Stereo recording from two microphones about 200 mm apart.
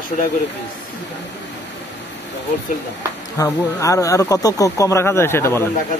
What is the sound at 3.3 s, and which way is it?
Speech, 15° left (ahead or behind).